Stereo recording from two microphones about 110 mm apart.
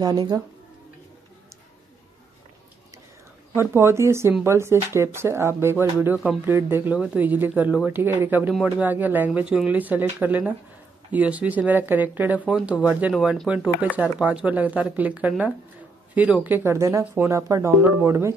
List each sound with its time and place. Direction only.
0.0 s speech: 35° right (ahead or behind)
3.5 s speech: 25° right (ahead or behind)